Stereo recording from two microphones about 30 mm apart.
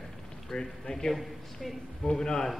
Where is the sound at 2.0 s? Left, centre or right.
Left.